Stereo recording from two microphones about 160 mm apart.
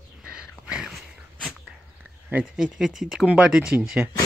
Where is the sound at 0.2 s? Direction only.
5° right (ahead or behind).